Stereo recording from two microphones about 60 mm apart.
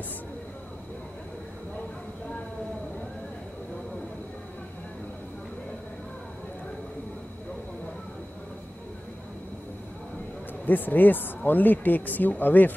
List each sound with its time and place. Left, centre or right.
10.6 s speech: left